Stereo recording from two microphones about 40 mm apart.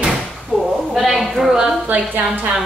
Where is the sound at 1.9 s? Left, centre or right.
Right.